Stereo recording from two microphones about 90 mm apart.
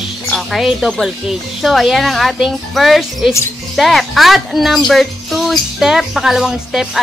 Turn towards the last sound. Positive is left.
turn(degrees=-5)  # may be behind; listen again after turning